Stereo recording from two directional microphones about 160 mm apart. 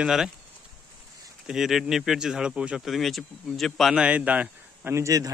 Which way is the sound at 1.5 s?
Centre (ahead or behind).